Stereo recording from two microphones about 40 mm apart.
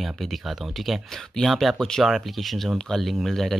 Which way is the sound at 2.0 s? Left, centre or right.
Centre.